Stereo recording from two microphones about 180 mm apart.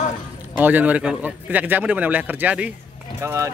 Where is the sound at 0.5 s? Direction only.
10° right (ahead or behind).